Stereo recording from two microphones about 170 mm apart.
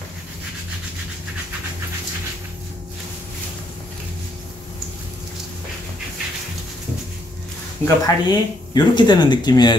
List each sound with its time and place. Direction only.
7.8 s speech: 25° left (ahead or behind)